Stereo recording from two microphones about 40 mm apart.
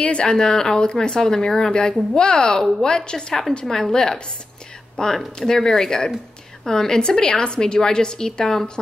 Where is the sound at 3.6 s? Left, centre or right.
Centre.